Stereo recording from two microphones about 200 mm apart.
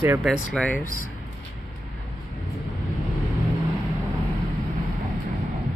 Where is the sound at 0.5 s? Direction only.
5° left (ahead or behind).